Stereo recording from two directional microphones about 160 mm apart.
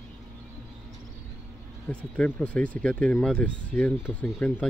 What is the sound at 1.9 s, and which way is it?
Speech, 10° left (ahead or behind).